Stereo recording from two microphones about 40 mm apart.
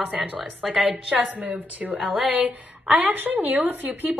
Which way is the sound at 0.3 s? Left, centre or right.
Right.